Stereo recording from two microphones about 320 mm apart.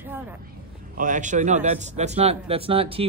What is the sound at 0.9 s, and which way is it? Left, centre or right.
A man's voice, right.